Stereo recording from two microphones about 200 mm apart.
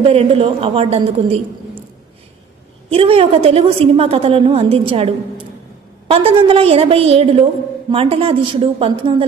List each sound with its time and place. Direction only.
0.0 s a woman's voice: 30° right (ahead or behind)
2.9 s a woman's voice: 30° right (ahead or behind)